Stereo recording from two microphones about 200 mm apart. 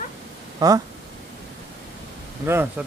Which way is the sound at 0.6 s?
20° right (ahead or behind).